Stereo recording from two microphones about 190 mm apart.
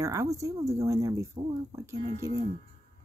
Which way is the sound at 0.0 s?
15° right (ahead or behind).